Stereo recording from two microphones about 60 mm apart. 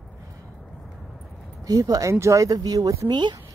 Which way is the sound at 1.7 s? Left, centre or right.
Right.